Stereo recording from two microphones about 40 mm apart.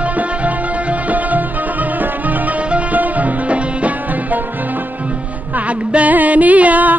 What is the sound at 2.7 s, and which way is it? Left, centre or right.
Music, right.